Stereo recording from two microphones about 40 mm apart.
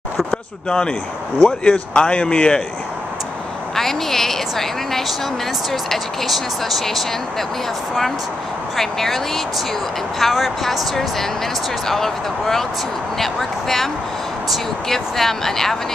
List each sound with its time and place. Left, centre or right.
0.3 s speech: left
3.7 s a woman's voice: centre
8.7 s a woman's voice: centre
14.9 s a woman's voice: centre